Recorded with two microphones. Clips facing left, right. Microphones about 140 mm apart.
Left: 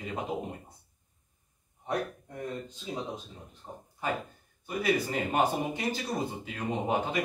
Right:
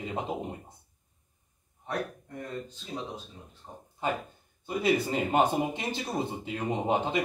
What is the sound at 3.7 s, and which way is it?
Speech, 20° left (ahead or behind).